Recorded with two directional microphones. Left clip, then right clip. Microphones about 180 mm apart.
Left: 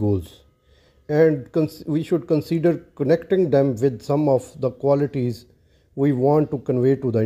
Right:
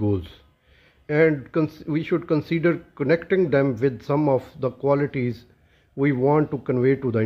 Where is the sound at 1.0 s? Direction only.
15° left (ahead or behind).